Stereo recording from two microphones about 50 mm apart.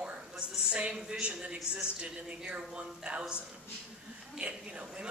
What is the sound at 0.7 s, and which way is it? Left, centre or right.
A woman's voice, right.